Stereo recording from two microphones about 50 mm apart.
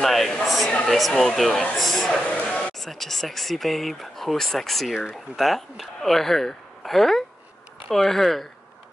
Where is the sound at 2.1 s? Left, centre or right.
Left.